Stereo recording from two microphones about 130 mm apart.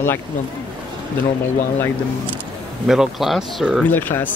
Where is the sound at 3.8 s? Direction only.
15° left (ahead or behind).